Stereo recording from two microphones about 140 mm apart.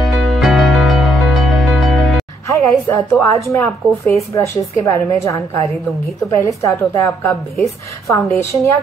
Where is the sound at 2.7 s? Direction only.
Centre (ahead or behind).